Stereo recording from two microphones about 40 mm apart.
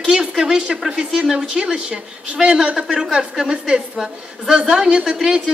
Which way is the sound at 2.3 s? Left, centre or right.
Centre.